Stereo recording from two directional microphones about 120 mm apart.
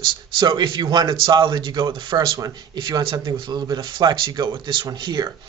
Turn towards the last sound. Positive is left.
turn(degrees=-35)  # may be behind; listen again after turning